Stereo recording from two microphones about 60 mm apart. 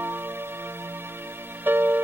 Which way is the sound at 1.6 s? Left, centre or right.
Right.